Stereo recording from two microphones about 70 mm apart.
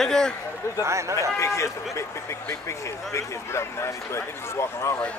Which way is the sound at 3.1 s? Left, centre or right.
Left.